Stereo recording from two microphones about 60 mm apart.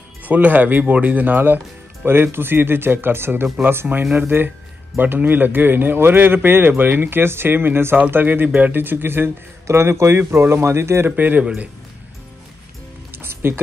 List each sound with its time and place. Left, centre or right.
0.2 s speech: right
11.1 s speech: right
13.1 s music: right